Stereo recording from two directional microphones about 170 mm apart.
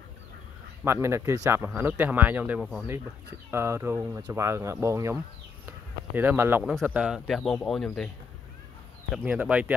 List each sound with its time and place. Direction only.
0.8 s speech: 15° right (ahead or behind); by 8.1 s centre (ahead or behind)
9.2 s speech: 10° right (ahead or behind)